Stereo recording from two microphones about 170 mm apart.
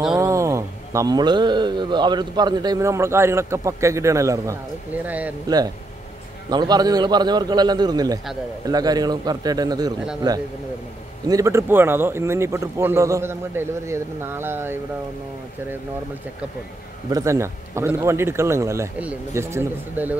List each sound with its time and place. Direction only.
0.1 s speech: 20° right (ahead or behind)
6.5 s a man's voice: 25° right (ahead or behind)
17.1 s speech: 20° right (ahead or behind)